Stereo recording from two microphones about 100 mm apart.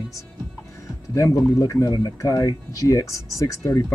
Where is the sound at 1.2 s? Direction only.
30° left (ahead or behind).